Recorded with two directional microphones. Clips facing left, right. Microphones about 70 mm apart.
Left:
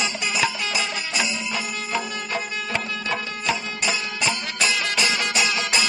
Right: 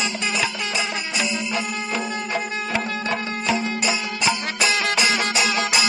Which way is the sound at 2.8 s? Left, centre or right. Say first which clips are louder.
Right 4 dB; right.